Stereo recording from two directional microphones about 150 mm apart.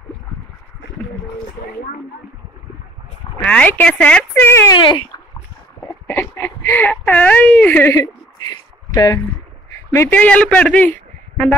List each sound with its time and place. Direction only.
3.4 s speech: 10° left (ahead or behind)
4.7 s speech: 30° left (ahead or behind)
6.0 s a man's voice: 15° left (ahead or behind)